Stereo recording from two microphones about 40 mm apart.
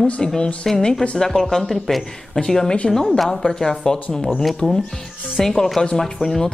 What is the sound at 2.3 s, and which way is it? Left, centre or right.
Speech, centre.